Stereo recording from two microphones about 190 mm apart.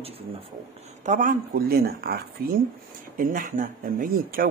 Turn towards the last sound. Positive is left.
turn(degrees=-50)  # may be behind; listen again after turning